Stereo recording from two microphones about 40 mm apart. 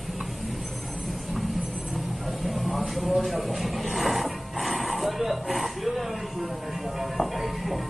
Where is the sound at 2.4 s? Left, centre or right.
Centre.